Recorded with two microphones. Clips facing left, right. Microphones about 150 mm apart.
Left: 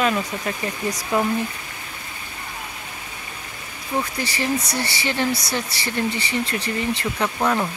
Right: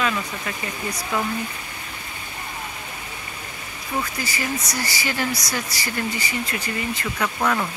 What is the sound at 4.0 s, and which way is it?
Speech, 30° left (ahead or behind).